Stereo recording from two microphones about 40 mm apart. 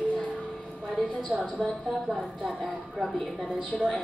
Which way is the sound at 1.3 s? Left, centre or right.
Centre.